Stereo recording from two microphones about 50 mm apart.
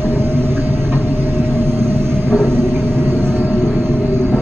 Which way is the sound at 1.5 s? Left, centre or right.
Right.